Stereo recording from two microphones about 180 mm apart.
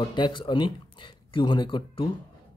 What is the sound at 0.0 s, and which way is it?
Speech, 25° left (ahead or behind).